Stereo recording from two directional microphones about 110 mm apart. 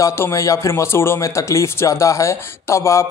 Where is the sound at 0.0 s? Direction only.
25° left (ahead or behind).